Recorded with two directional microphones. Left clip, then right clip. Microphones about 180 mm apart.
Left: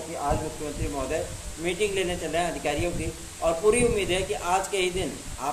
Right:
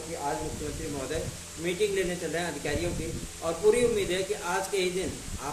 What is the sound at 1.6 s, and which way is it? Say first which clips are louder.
Speech: left 2 dB; 5° left (ahead or behind).